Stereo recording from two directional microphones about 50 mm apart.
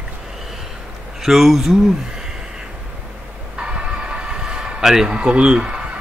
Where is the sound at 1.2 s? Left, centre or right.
Centre.